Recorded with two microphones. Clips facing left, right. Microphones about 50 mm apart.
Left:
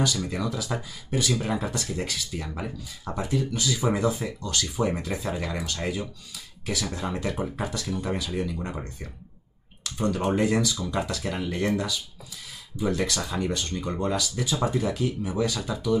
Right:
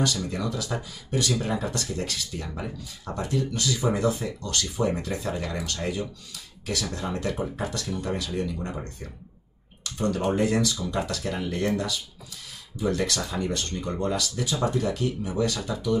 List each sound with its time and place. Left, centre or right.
0.0 s speech: centre